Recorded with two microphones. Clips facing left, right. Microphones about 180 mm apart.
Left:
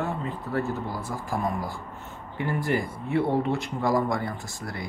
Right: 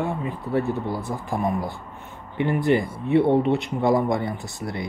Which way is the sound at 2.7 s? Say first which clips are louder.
Right 9 dB; 20° right (ahead or behind).